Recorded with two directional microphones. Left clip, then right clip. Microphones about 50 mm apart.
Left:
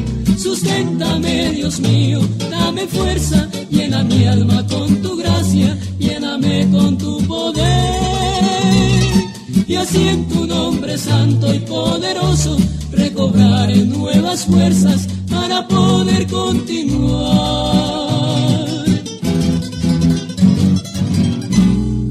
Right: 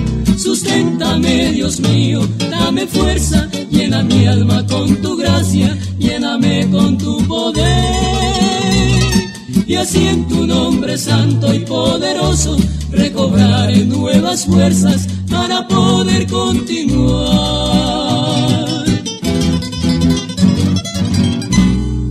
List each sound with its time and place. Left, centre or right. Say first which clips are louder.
0.3 s music: right 2 dB; left
1.0 s music: right 3 dB; left
6.7 s music: right 2 dB; left